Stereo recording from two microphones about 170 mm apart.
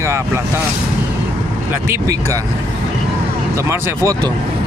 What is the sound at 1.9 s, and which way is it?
Speech, 20° right (ahead or behind).